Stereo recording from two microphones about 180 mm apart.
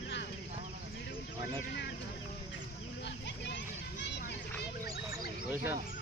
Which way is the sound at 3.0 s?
75° left (ahead or behind).